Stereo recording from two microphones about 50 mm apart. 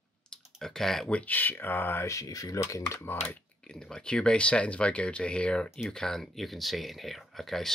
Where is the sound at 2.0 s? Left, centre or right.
Left.